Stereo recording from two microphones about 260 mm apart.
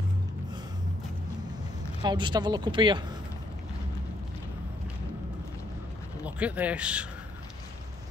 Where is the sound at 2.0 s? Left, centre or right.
Centre.